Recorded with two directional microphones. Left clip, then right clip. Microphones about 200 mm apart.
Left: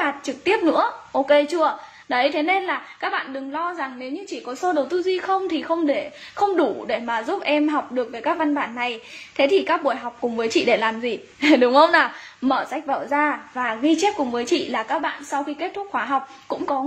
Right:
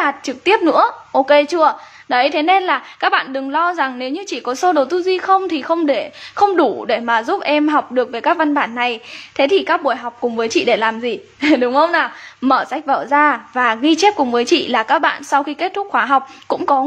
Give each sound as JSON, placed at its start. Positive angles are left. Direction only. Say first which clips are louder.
{"t": 0.0, "sound": "a woman's voice", "louder": "right 6 dB", "side_deg": -20}
{"t": 12.4, "sound": "a woman's voice", "louder": "right 7 dB", "side_deg": -15}